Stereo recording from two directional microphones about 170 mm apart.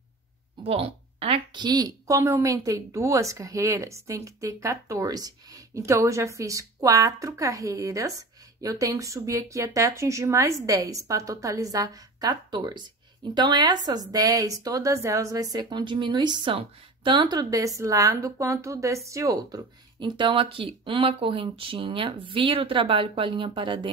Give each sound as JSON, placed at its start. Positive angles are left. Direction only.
{"t": 0.7, "sound": "a woman's voice", "side_deg": -35}